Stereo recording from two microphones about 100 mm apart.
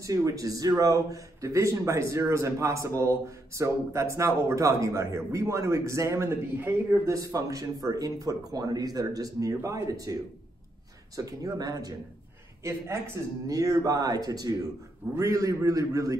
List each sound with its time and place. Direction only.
0.0 s a man's voice: 35° right (ahead or behind)
11.1 s a man's voice: 35° right (ahead or behind)
12.6 s a man's voice: 25° right (ahead or behind)